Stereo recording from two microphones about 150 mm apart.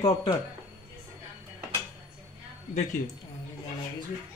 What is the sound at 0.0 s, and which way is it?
Speech, 25° left (ahead or behind).